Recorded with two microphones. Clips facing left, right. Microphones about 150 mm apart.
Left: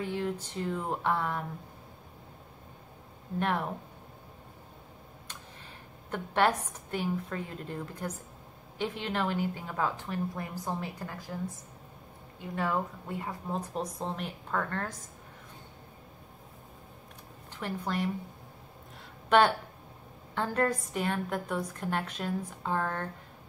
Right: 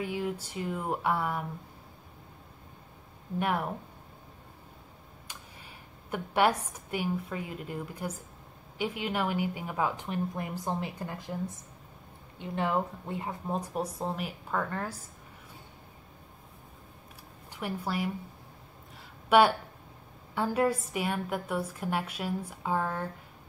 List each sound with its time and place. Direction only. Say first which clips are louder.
0.0 s a woman's voice: even; 10° right (ahead or behind)
3.3 s a woman's voice: right 1 dB; 10° right (ahead or behind)
6.0 s a woman's voice: right 1 dB; 10° right (ahead or behind)
17.5 s speech: even; 10° right (ahead or behind)
19.2 s a woman's voice: right 1 dB; 10° right (ahead or behind)